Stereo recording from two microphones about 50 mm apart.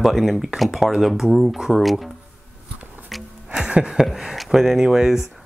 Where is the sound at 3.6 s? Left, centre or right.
Centre.